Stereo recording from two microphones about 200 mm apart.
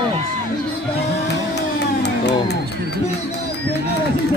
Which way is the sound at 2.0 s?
55° left (ahead or behind).